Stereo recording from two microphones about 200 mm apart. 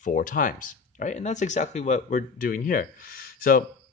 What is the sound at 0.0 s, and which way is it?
Speech, 40° left (ahead or behind).